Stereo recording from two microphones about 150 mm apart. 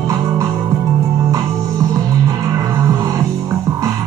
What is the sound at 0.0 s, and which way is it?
Music, 20° right (ahead or behind).